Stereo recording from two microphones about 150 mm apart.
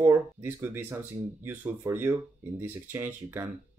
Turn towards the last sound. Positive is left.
turn(degrees=-15)  # may be behind; listen again after turning